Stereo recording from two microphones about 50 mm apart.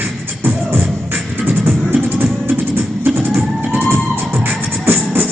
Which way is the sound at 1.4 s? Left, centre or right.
Right.